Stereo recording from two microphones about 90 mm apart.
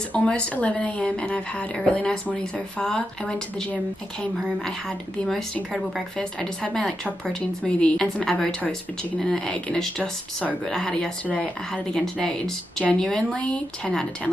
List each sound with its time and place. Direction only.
0.1 s speech: 15° left (ahead or behind)
5.3 s speech: centre (ahead or behind)
6.1 s speech: 10° left (ahead or behind)